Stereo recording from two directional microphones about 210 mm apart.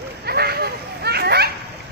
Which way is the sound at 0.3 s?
50° right (ahead or behind).